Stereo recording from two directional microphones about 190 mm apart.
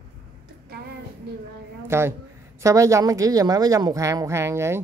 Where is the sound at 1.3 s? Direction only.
60° right (ahead or behind).